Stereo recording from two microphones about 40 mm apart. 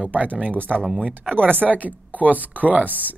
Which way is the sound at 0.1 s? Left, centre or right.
Right.